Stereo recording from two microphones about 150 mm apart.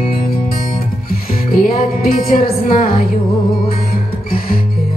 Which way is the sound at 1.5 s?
75° left (ahead or behind).